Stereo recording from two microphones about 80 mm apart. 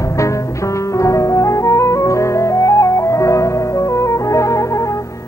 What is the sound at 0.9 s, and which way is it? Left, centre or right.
Music, left.